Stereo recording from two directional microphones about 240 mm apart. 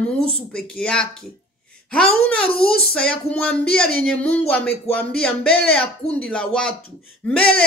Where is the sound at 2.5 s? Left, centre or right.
Left.